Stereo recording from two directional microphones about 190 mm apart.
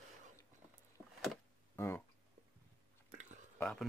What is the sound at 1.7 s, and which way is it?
Speech, 10° left (ahead or behind).